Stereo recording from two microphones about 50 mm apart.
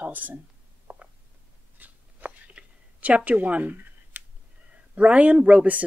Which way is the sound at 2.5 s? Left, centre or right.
Right.